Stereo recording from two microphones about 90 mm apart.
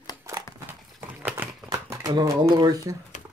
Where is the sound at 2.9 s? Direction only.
40° right (ahead or behind).